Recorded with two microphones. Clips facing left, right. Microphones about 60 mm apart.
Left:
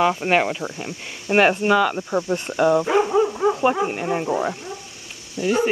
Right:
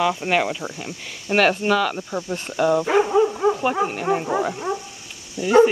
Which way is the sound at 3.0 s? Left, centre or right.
Centre.